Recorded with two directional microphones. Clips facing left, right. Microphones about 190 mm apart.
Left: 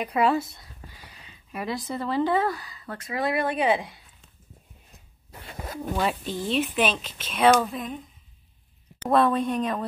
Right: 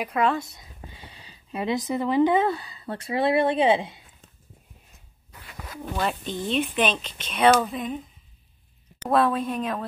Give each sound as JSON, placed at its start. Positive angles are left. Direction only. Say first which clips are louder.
{"t": 0.0, "sound": "speech", "louder": "left 1 dB", "side_deg": 5}
{"t": 0.6, "sound": "speech", "louder": "right 3 dB", "side_deg": -20}
{"t": 5.3, "sound": "zipper", "louder": "left 5 dB", "side_deg": 30}
{"t": 5.9, "sound": "speech", "louder": "even", "side_deg": 5}
{"t": 9.1, "sound": "speech", "louder": "left 1 dB", "side_deg": 0}